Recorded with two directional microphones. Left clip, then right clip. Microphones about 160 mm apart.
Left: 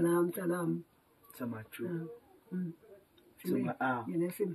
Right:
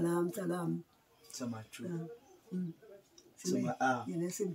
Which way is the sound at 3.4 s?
10° right (ahead or behind).